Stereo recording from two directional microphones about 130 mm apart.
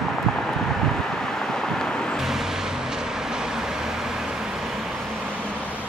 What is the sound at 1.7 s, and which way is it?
Vehicle, centre (ahead or behind).